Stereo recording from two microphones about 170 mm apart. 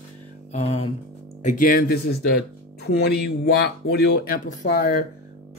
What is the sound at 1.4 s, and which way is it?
Speech, 55° left (ahead or behind).